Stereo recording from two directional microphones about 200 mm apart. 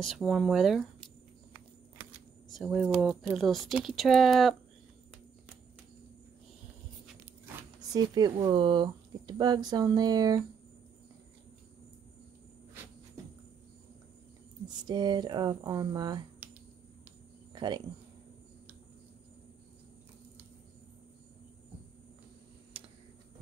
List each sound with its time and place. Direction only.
0.0 s a sound: centre (ahead or behind)
2.5 s speech: centre (ahead or behind)
7.9 s speech: 20° right (ahead or behind)
14.9 s speech: 20° right (ahead or behind)
17.5 s cricket: 20° right (ahead or behind)